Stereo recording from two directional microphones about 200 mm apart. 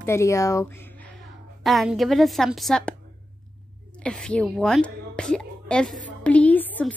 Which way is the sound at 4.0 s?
5° left (ahead or behind).